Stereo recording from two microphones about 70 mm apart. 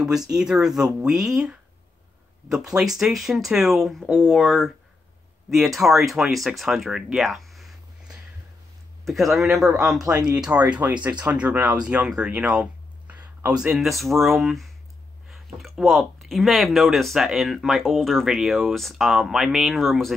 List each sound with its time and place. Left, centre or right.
0.3 s speech: centre
4.1 s speech: centre
5.5 s speech: centre
9.0 s speech: centre
13.7 s speech: centre